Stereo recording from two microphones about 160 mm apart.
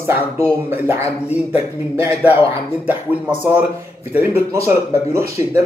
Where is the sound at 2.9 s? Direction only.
10° right (ahead or behind).